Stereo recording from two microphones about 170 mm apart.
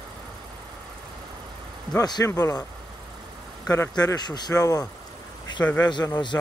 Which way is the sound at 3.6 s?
20° left (ahead or behind).